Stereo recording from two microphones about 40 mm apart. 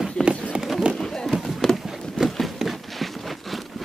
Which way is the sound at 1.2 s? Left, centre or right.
Centre.